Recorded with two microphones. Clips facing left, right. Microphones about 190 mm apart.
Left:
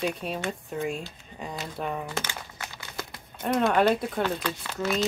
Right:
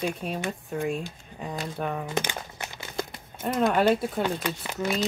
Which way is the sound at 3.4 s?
5° right (ahead or behind).